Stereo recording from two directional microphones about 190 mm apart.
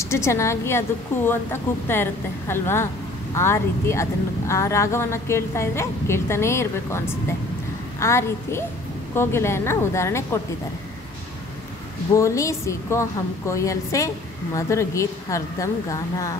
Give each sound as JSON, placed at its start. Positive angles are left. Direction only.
{"t": 0.0, "sound": "a woman's voice", "side_deg": 15}
{"t": 8.0, "sound": "a woman's voice", "side_deg": 15}
{"t": 12.1, "sound": "a woman's voice", "side_deg": 15}